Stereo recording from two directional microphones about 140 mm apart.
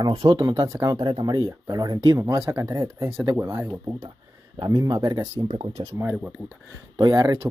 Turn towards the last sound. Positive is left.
turn(degrees=-25)  # may be behind; listen again after turning